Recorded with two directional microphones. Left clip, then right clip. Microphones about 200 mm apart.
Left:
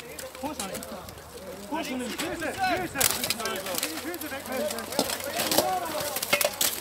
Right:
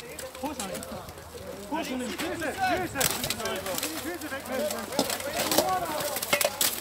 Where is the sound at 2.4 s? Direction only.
15° left (ahead or behind); by 6.8 s 5° right (ahead or behind).